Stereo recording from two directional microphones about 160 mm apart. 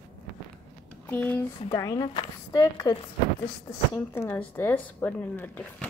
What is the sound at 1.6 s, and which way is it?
A woman's voice, 20° left (ahead or behind).